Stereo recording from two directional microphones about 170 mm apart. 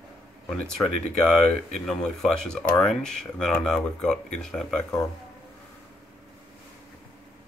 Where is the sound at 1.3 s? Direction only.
5° left (ahead or behind).